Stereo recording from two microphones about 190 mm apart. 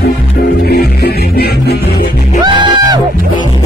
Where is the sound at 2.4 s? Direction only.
25° right (ahead or behind).